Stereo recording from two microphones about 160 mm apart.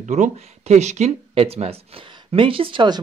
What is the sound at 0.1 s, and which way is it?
Speech, 45° right (ahead or behind).